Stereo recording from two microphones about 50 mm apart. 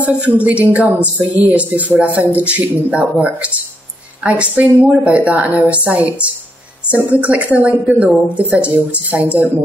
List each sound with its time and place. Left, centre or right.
0.4 s speech: right